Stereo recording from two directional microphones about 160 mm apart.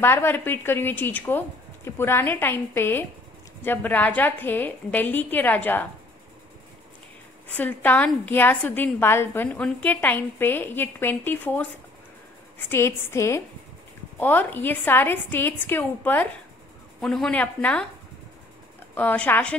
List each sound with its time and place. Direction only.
0.0 s a woman's voice: 15° left (ahead or behind)
7.4 s a woman's voice: 10° left (ahead or behind)
18.9 s a woman's voice: 10° left (ahead or behind)